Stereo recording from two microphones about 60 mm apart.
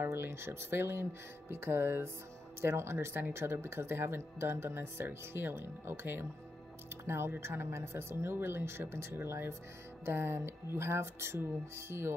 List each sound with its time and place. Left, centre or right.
0.0 s speech: right